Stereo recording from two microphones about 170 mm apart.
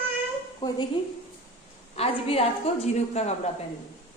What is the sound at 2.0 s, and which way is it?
A woman's voice, 35° left (ahead or behind).